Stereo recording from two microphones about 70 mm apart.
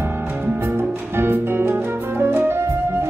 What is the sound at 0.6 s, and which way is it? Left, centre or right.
Music, right.